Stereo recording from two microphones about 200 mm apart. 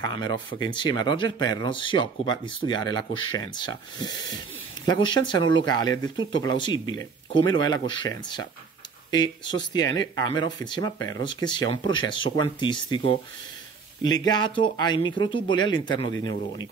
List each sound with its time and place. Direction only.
0.0 s speech: 20° left (ahead or behind)